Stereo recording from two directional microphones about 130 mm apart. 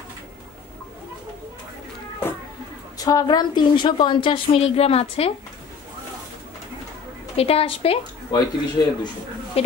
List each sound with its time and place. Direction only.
3.0 s a woman's voice: 30° left (ahead or behind); by 5.3 s 50° left (ahead or behind)
7.3 s a woman's voice: 50° left (ahead or behind)
8.3 s a woman's voice: 30° left (ahead or behind)